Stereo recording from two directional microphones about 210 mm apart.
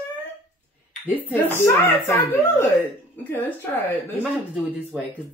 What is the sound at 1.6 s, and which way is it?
Speech, 10° left (ahead or behind).